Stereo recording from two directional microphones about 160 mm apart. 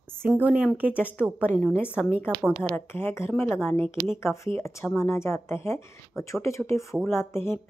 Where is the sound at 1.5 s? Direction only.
Centre (ahead or behind).